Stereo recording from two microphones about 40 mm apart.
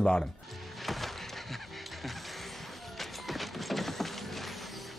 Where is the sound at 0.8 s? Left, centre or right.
Centre.